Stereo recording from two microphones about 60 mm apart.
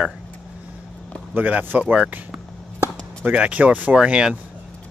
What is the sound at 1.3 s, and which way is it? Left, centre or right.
Speech, right.